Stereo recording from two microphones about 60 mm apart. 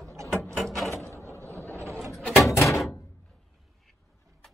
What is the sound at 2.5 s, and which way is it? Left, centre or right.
Door, left.